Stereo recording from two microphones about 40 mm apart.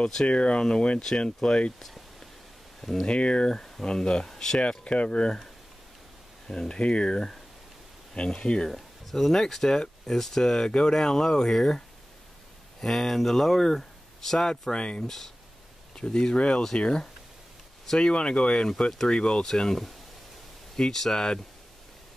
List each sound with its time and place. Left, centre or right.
0.3 s speech: left
2.8 s speech: centre
3.1 s speech: left
3.5 s speech: centre
3.8 s speech: centre
4.6 s speech: left
6.4 s speech: centre
6.8 s speech: left
8.6 s speech: centre
12.8 s speech: centre
14.7 s speech: left
15.0 s speech: centre
16.0 s speech: centre